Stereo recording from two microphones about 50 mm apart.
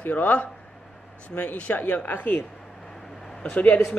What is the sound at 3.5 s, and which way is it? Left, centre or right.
Speech, left.